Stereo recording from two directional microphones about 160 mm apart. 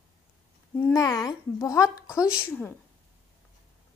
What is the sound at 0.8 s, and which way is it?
Speech, 20° left (ahead or behind).